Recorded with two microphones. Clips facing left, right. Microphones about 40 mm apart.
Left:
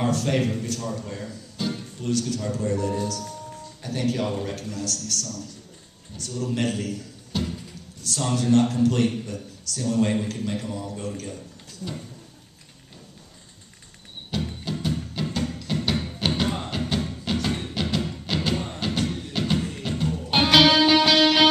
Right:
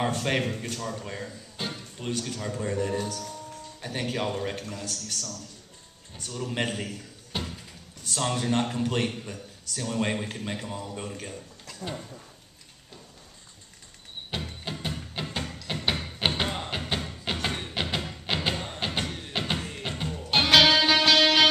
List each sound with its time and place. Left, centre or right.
0.2 s a man's voice: right
3.0 s a man's voice: right
7.3 s a sound: centre
8.1 s a man's voice: right
14.6 s music: right
16.4 s music: centre
20.4 s music: centre